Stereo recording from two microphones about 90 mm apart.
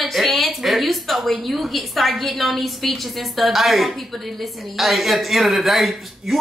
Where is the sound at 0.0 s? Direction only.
Centre (ahead or behind).